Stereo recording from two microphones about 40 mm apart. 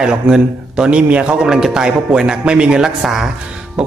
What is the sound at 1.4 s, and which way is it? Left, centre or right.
A man's voice, centre.